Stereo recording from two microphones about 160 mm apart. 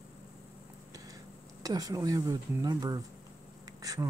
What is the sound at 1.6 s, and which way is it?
Speech, 20° right (ahead or behind).